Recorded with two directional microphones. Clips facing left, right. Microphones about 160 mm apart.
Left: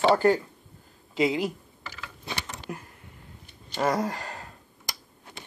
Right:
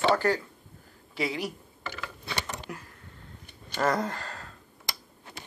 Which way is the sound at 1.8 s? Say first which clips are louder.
Right 5 dB; 60° right (ahead or behind).